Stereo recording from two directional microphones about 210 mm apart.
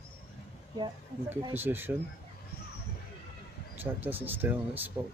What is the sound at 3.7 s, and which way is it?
Speech, 10° right (ahead or behind).